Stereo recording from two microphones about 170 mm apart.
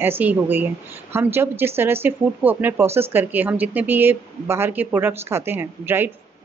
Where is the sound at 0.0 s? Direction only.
10° right (ahead or behind).